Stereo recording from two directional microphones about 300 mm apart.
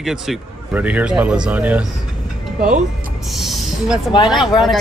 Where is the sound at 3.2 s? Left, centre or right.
Centre.